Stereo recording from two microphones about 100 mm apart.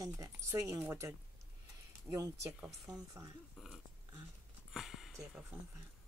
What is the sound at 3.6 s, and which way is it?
Dog, 5° right (ahead or behind).